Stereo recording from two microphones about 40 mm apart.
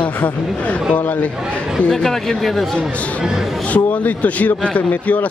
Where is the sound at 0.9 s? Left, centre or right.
Left.